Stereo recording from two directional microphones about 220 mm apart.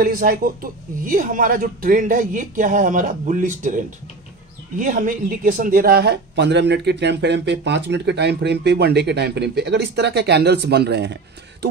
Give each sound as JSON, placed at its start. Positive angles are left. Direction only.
{"t": 0.0, "sound": "a man's voice", "side_deg": -40}